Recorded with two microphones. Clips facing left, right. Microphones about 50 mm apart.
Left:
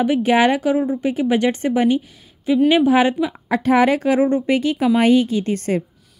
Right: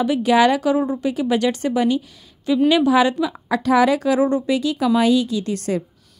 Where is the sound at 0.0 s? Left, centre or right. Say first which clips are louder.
Even; left.